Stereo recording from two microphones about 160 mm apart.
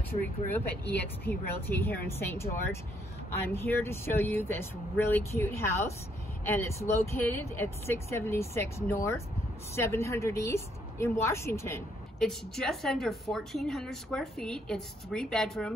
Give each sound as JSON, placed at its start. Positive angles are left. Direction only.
{"t": 0.9, "sound": "speech", "side_deg": 10}
{"t": 12.2, "sound": "a woman's voice", "side_deg": 5}